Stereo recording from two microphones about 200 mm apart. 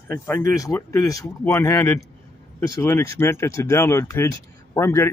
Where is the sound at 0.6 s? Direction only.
15° left (ahead or behind).